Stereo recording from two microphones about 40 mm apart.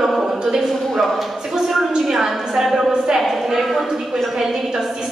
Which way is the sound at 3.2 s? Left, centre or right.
Centre.